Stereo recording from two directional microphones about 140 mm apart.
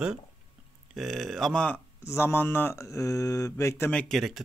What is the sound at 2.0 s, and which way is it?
Speech, 15° left (ahead or behind).